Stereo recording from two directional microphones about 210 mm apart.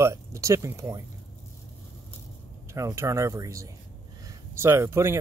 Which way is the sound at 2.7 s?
15° right (ahead or behind).